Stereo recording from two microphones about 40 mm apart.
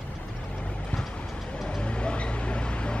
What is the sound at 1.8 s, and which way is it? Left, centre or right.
Vehicle, left.